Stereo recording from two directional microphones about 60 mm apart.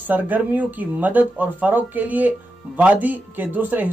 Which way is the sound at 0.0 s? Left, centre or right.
Right.